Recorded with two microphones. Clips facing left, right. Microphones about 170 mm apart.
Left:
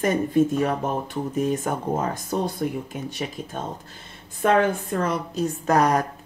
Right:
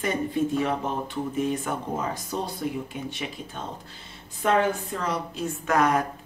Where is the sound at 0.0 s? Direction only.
45° left (ahead or behind).